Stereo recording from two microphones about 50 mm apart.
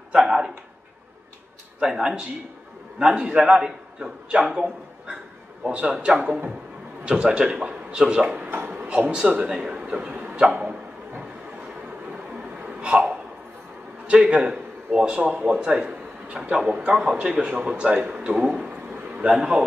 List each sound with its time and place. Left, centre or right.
0.1 s a sound: centre
1.8 s a man's voice: centre
8.5 s a man's voice: right
10.1 s a sound: right
10.4 s speech: right
12.1 s hiccup: right
14.1 s a man's voice: centre